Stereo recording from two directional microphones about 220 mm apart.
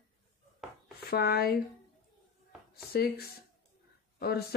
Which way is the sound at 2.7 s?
45° left (ahead or behind).